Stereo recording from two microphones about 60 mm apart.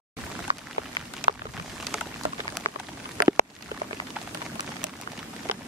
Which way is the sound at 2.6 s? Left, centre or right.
Centre.